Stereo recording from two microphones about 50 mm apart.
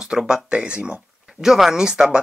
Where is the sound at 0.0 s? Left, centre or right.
Centre.